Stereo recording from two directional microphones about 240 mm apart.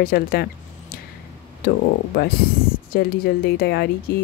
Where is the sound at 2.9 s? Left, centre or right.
Left.